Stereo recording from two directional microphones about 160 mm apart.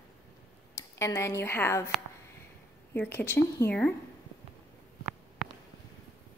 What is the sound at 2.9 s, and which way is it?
Speech, 10° left (ahead or behind).